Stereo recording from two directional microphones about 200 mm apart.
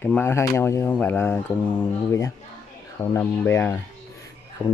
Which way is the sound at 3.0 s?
10° left (ahead or behind).